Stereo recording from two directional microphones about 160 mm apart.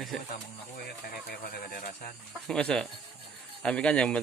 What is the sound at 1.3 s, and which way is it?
Speech, 70° left (ahead or behind).